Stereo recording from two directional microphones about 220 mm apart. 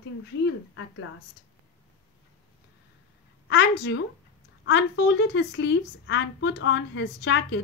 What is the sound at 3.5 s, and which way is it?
A woman's voice, 50° left (ahead or behind).